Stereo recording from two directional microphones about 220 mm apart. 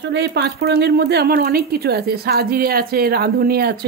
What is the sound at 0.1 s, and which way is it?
Speech, 50° right (ahead or behind).